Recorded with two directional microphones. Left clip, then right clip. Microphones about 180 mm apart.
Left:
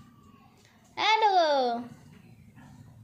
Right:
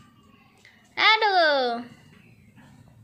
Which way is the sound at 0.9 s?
5° right (ahead or behind).